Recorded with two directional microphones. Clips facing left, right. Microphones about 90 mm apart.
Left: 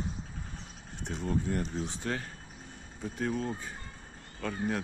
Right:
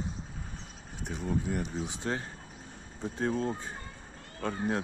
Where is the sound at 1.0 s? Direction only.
5° right (ahead or behind).